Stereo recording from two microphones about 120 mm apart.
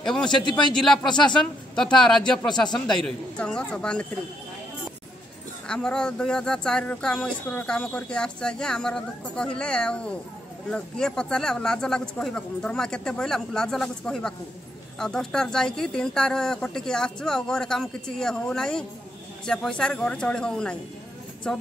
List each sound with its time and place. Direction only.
0.0 s a man's voice: 5° left (ahead or behind)
0.4 s a man's voice: 40° left (ahead or behind)
1.3 s speech: 5° left (ahead or behind)
5.7 s speech: 5° left (ahead or behind)